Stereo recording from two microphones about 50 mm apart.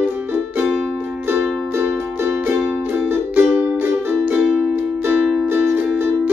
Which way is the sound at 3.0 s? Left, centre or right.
Right.